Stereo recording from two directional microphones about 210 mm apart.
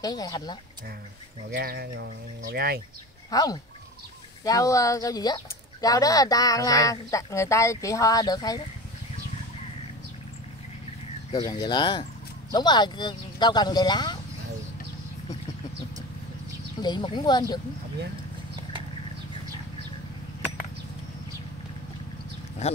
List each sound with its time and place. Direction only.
0.0 s speech: 20° left (ahead or behind)
1.5 s speech: 50° right (ahead or behind)
3.3 s speech: 15° left (ahead or behind)
11.3 s speech: 20° left (ahead or behind)
16.8 s speech: 20° left (ahead or behind)